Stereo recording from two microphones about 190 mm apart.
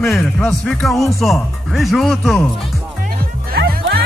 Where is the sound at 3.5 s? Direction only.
55° right (ahead or behind).